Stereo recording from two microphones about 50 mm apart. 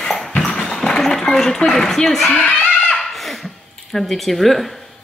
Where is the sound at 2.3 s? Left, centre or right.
Left.